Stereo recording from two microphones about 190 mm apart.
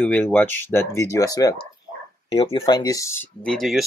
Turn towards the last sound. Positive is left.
turn(degrees=0)  # may be behind; listen again after turning